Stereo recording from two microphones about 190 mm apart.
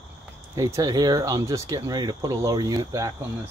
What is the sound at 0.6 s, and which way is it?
Speech, 20° right (ahead or behind).